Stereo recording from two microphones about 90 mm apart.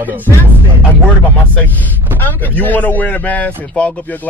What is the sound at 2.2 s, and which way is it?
Speech, 20° left (ahead or behind).